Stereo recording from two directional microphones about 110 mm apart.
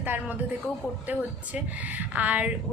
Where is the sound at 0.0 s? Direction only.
15° right (ahead or behind).